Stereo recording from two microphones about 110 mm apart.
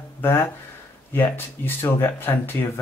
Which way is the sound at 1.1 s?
20° left (ahead or behind).